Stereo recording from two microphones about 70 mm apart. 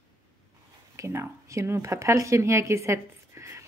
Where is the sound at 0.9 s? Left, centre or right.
Right.